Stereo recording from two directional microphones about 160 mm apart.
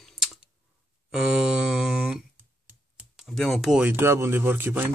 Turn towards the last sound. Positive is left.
turn(degrees=-10)  # may be behind; listen again after turning